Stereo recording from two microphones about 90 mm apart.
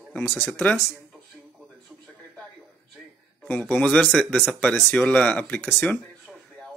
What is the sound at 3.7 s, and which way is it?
Speech, 15° left (ahead or behind).